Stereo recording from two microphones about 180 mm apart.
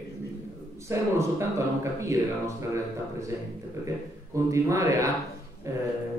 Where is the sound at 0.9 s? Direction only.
15° right (ahead or behind).